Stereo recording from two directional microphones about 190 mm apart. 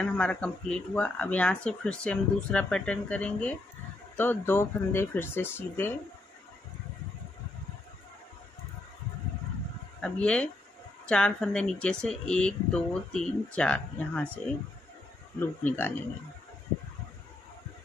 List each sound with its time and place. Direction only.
0.0 s speech: 5° left (ahead or behind)
10.0 s speech: 5° left (ahead or behind)
15.3 s speech: 10° left (ahead or behind)